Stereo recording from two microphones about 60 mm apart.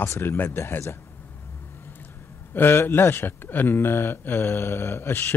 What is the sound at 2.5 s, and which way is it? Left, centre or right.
Speech, left.